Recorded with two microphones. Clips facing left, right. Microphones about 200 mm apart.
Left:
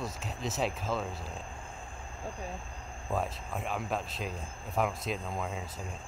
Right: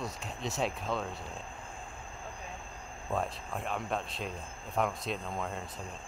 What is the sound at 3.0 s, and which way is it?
Speech, 5° left (ahead or behind).